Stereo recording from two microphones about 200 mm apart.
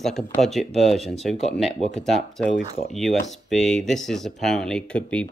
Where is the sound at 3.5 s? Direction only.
Centre (ahead or behind).